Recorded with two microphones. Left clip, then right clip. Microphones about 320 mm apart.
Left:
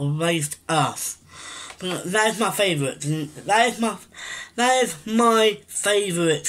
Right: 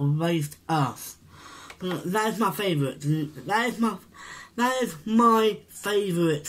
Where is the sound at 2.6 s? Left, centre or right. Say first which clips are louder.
Left 3 dB; left.